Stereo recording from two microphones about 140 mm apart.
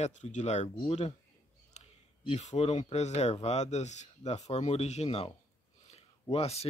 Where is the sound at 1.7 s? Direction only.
55° left (ahead or behind).